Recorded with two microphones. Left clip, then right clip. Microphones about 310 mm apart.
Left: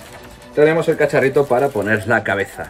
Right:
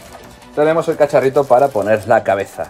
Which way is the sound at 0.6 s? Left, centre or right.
Centre.